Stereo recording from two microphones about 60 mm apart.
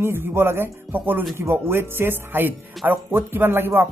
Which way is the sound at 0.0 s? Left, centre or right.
Right.